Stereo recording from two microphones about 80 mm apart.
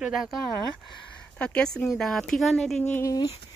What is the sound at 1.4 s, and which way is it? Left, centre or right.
A woman's voice, centre.